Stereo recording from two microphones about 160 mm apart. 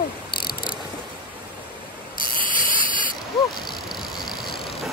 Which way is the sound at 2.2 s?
60° left (ahead or behind).